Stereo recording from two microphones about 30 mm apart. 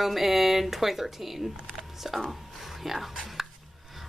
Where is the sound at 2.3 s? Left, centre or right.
Centre.